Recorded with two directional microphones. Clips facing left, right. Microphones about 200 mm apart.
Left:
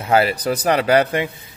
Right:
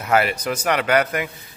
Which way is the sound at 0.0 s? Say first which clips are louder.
Left 3 dB; 30° left (ahead or behind).